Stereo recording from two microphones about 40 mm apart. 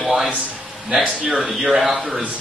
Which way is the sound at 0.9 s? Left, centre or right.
Centre.